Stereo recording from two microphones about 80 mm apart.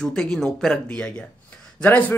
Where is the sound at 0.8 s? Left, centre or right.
Centre.